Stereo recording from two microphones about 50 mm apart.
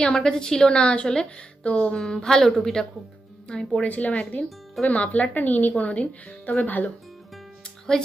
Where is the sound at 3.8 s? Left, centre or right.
Left.